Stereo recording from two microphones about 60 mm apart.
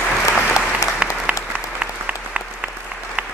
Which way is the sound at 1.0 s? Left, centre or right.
Centre.